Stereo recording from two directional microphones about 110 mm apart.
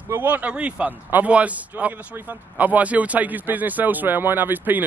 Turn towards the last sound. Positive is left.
turn(degrees=-15)  # may be behind; listen again after turning